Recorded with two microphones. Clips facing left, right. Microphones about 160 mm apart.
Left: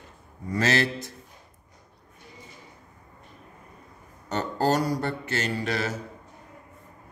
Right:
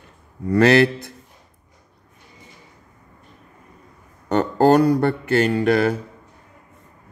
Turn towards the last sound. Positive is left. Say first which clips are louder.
# right 11 dB
turn(degrees=-55)  # may be behind; listen again after turning